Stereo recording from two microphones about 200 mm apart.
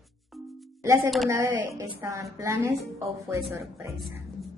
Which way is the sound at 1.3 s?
10° right (ahead or behind).